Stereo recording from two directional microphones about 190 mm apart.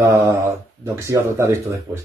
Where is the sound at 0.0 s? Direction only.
15° right (ahead or behind).